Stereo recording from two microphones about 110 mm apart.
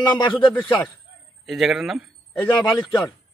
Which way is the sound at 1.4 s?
Centre (ahead or behind).